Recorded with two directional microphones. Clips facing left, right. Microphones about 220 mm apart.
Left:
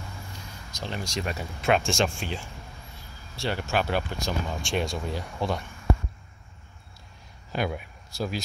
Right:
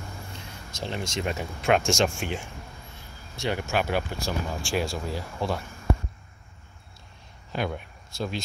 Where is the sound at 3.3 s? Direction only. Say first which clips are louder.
Right 1 dB; 20° right (ahead or behind).